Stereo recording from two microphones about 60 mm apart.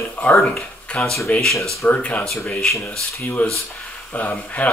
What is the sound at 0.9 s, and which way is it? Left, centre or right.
Speech, left.